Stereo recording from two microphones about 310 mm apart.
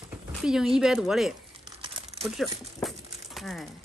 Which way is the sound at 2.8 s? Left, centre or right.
Centre.